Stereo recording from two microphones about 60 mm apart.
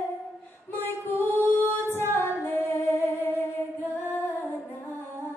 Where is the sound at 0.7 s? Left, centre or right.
Left.